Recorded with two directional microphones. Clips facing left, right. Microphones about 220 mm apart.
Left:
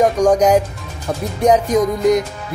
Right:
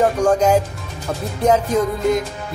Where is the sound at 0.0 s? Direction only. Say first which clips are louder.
Left 3 dB; 15° left (ahead or behind).